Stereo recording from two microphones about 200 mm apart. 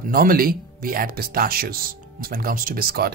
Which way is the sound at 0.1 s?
45° right (ahead or behind).